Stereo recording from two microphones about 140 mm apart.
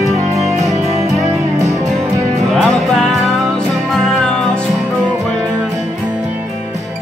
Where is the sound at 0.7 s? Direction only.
55° right (ahead or behind).